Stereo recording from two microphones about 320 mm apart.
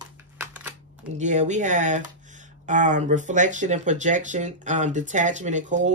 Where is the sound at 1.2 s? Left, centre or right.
Right.